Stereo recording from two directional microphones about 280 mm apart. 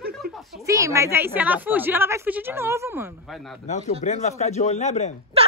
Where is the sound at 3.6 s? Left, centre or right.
Left.